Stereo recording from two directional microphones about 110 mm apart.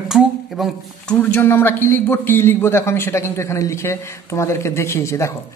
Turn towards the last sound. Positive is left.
turn(degrees=25)  # may be behind; listen again after turning